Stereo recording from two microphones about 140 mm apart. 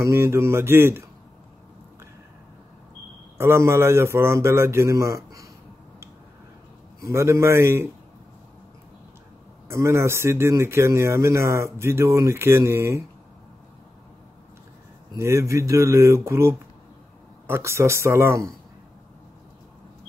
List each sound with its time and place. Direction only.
0.0 s speech: 20° right (ahead or behind)
3.3 s speech: 20° right (ahead or behind)
7.0 s speech: 20° right (ahead or behind)
9.7 s speech: 20° right (ahead or behind)
15.1 s speech: 20° right (ahead or behind)